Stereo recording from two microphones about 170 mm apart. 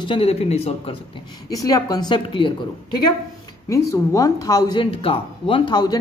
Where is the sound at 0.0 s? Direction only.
35° left (ahead or behind).